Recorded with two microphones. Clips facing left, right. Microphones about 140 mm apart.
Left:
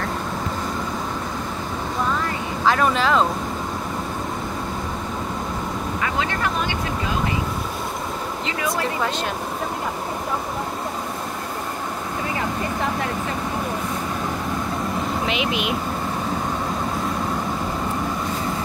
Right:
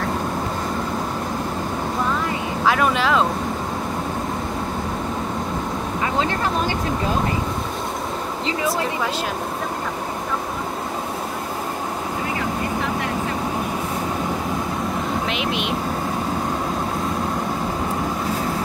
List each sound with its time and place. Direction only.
2.6 s speech: 5° right (ahead or behind)
6.1 s speech: 30° right (ahead or behind)
15.2 s speech: centre (ahead or behind)